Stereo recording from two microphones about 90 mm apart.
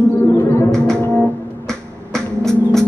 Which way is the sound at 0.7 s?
5° left (ahead or behind).